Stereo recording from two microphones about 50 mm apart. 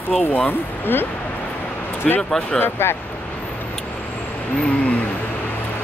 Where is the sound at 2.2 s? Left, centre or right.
Centre.